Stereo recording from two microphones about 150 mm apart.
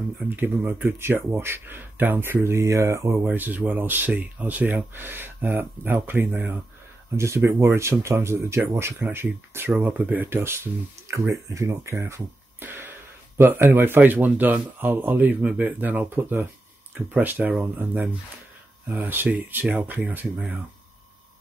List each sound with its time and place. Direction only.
0.4 s speech: 15° right (ahead or behind)